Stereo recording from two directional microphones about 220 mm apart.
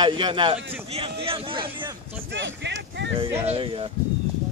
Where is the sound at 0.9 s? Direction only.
25° right (ahead or behind).